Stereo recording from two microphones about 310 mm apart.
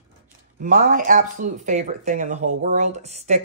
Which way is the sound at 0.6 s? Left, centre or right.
Right.